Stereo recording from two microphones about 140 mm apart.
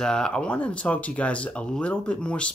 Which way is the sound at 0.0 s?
5° left (ahead or behind).